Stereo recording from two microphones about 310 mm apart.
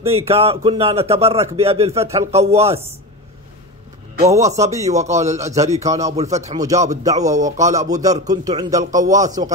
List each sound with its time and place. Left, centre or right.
0.0 s a man's voice: centre
4.3 s speech: centre
4.8 s a man's voice: right
7.1 s speech: centre
7.4 s a man's voice: right